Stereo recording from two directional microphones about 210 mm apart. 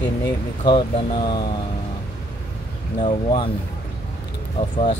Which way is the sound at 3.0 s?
25° left (ahead or behind).